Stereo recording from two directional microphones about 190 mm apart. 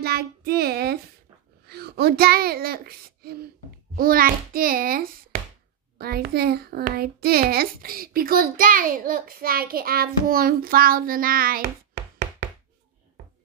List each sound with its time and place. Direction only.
0.0 s a child's voice: 55° right (ahead or behind)